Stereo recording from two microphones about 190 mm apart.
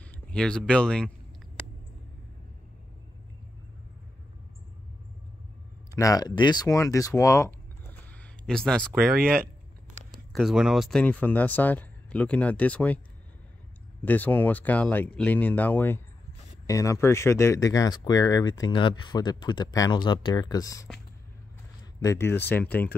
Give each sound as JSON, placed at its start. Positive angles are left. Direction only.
{"t": 0.3, "sound": "speech", "side_deg": 5}
{"t": 5.9, "sound": "speech", "side_deg": 20}
{"t": 10.1, "sound": "speech", "side_deg": 0}
{"t": 14.0, "sound": "speech", "side_deg": 10}
{"t": 22.0, "sound": "speech", "side_deg": 15}